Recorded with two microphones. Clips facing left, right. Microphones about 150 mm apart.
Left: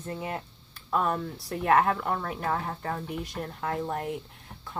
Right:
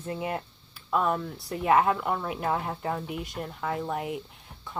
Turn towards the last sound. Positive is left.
turn(degrees=-5)  # may be behind; listen again after turning